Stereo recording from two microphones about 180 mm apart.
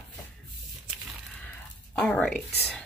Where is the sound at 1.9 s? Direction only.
Centre (ahead or behind).